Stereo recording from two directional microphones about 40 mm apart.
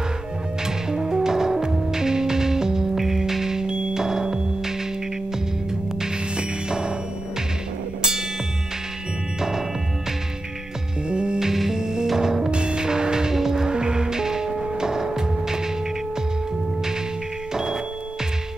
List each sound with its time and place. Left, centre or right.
0.8 s music: centre
6.3 s music: right
9.4 s music: centre
11.1 s music: right
11.4 s music: centre
13.7 s music: right